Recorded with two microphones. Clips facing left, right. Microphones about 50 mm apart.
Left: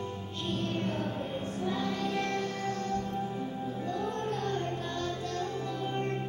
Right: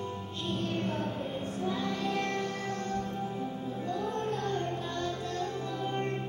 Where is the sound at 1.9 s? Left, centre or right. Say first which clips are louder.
Even; right.